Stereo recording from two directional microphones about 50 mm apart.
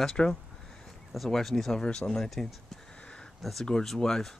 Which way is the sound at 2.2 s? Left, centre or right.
Centre.